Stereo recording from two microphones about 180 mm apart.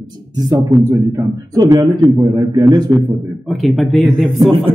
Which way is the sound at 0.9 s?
15° right (ahead or behind).